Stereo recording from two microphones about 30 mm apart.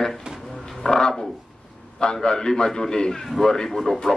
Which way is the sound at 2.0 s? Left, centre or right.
Left.